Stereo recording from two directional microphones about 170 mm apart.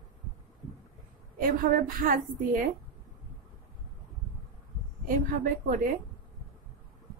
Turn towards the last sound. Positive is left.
turn(degrees=-50)  # may be behind; listen again after turning